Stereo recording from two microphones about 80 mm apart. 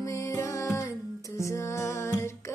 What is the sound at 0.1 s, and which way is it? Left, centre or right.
Music, left.